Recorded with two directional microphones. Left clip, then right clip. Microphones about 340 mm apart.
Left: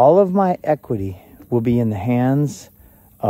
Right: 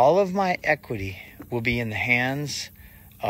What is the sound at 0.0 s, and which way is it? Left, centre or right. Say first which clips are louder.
Speech: left 6 dB; centre.